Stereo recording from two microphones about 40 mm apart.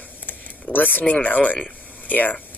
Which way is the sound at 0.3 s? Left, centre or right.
Left.